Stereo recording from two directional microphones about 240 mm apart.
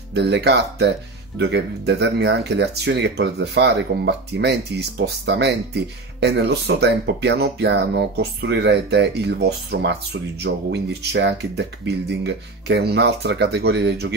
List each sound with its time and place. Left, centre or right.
0.1 s speech: right